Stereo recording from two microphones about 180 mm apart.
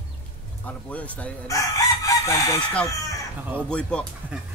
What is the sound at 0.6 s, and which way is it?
Speech, 10° left (ahead or behind).